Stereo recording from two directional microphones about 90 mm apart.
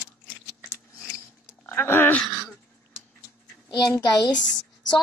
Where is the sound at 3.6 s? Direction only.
50° left (ahead or behind).